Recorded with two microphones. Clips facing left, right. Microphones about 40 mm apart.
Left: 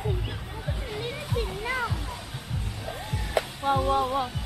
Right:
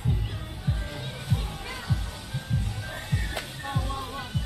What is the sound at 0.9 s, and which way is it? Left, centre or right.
Music, left.